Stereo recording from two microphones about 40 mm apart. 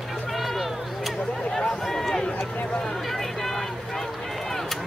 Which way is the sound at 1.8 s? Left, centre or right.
Centre.